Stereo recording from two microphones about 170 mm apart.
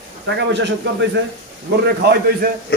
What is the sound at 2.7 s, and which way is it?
Speech, 75° left (ahead or behind).